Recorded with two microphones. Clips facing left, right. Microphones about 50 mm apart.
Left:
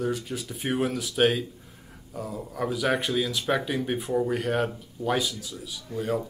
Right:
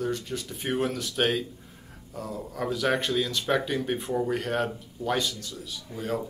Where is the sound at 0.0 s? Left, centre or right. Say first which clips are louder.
Left 1 dB; centre.